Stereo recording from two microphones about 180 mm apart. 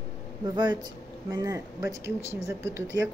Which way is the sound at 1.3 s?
20° right (ahead or behind).